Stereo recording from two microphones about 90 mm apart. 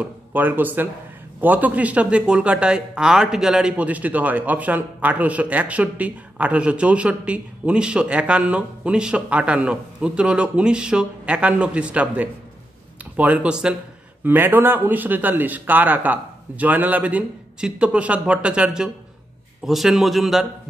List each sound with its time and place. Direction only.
0.0 s speech: 20° right (ahead or behind)
14.2 s a man's voice: 20° right (ahead or behind); by 20.4 s centre (ahead or behind)